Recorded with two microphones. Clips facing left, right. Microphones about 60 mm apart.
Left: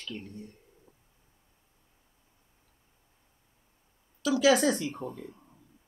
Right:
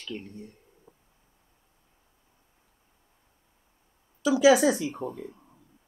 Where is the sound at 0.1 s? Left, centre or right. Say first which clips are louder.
Right 5 dB; right.